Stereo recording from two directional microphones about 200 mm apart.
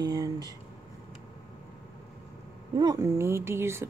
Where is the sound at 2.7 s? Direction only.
20° right (ahead or behind).